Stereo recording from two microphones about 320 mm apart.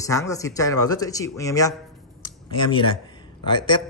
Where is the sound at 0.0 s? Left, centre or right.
Centre.